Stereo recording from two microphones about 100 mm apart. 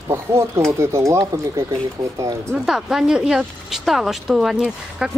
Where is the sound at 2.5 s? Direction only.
5° right (ahead or behind).